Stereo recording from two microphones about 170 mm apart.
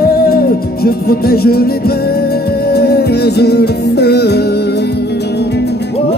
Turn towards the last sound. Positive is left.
turn(degrees=75)  # may be behind; listen again after turning